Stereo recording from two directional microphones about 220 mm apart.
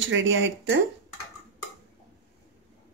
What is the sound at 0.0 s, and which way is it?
Speech, 60° right (ahead or behind).